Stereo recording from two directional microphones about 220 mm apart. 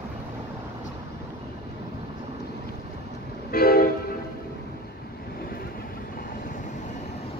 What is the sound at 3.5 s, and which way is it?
Train, 45° left (ahead or behind).